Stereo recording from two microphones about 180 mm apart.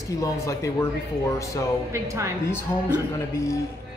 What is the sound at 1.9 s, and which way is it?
Speech, 15° right (ahead or behind).